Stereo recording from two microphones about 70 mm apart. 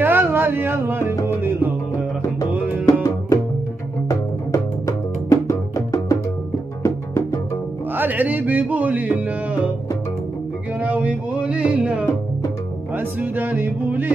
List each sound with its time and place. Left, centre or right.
0.0 s a sound: right
1.2 s music: right
2.5 s music: right
2.9 s music: left
7.9 s music: right
10.8 s music: right
12.9 s music: right